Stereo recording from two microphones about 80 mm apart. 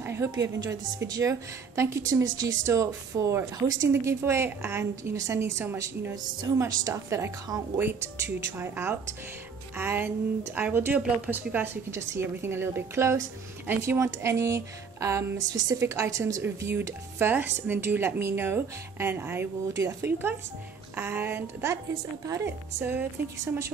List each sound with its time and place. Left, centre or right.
0.3 s a woman's voice: right
1.3 s a woman's voice: right
2.2 s speech: right
3.9 s a woman's voice: right
19.8 s speech: right
20.1 s a woman's voice: right